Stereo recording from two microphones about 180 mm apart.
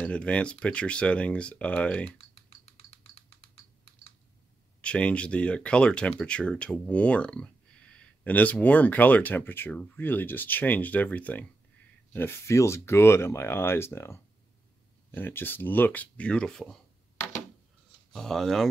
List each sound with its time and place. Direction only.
0.0 s speech: 5° left (ahead or behind)
2.6 s typing: 35° left (ahead or behind)
4.8 s speech: 5° left (ahead or behind)
18.1 s speech: centre (ahead or behind)